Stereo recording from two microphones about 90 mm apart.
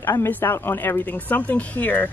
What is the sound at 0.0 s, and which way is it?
A man's voice, 30° left (ahead or behind).